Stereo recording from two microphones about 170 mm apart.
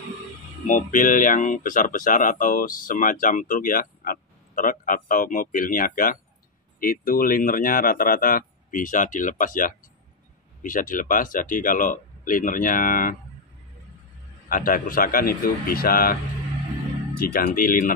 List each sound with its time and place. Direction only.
0.7 s speech: 50° left (ahead or behind)
14.5 s speech: 55° left (ahead or behind)
17.2 s speech: 60° left (ahead or behind)